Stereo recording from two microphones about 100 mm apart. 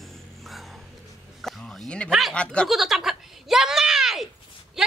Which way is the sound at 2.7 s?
Centre (ahead or behind).